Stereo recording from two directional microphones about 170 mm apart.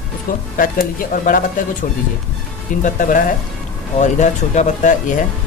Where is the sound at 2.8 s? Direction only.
50° left (ahead or behind).